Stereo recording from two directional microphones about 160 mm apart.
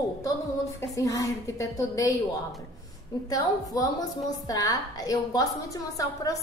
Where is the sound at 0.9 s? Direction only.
20° left (ahead or behind).